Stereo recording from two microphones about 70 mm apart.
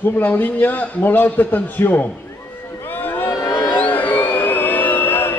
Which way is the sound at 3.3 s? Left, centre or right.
Left.